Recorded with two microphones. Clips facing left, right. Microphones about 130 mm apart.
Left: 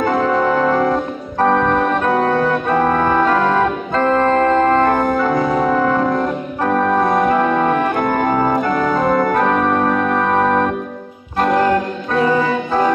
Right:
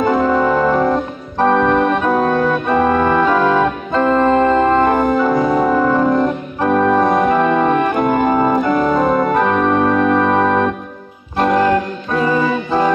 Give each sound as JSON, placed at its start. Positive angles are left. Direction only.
{"t": 0.0, "sound": "organ", "side_deg": -5}
{"t": 5.1, "sound": "music", "side_deg": -10}
{"t": 7.9, "sound": "organ", "side_deg": -15}